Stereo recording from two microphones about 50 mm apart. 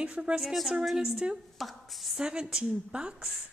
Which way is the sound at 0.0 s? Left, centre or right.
Right.